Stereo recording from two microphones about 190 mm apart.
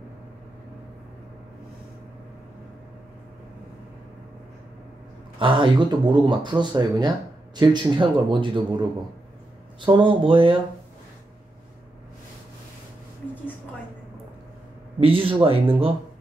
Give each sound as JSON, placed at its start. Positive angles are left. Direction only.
{"t": 5.4, "sound": "speech", "side_deg": -25}
{"t": 15.0, "sound": "speech", "side_deg": -30}